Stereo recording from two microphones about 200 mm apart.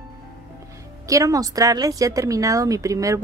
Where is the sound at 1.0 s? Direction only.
15° right (ahead or behind).